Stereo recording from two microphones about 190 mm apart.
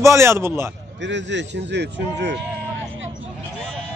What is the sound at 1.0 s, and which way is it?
A man's voice, 70° right (ahead or behind).